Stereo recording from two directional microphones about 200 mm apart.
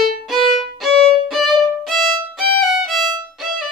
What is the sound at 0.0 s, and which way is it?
Violin, centre (ahead or behind).